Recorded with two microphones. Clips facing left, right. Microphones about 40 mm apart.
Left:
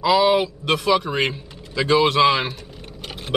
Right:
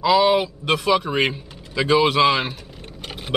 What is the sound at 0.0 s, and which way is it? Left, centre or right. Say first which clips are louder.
Speech: even; centre.